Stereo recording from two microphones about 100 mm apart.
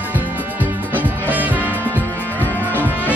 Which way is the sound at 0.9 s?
15° right (ahead or behind).